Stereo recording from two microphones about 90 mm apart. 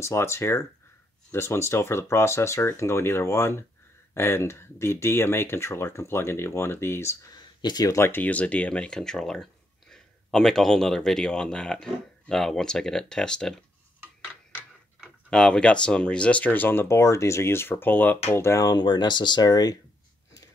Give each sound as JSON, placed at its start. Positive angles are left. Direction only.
{"t": 0.0, "sound": "speech", "side_deg": 30}
{"t": 7.2, "sound": "a sound", "side_deg": 50}
{"t": 7.9, "sound": "speech", "side_deg": 25}
{"t": 15.2, "sound": "speech", "side_deg": 10}
{"t": 18.7, "sound": "speech", "side_deg": 55}